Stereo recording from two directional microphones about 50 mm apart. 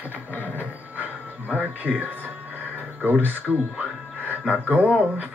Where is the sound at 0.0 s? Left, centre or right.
Right.